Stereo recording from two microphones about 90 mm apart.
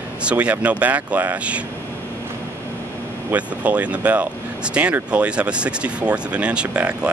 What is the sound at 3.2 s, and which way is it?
Speech, 15° right (ahead or behind).